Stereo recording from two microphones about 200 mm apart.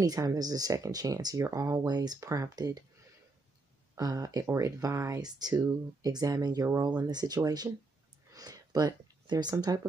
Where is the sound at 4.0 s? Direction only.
15° right (ahead or behind).